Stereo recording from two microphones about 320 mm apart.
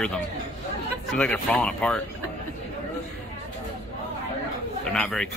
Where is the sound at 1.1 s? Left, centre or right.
Centre.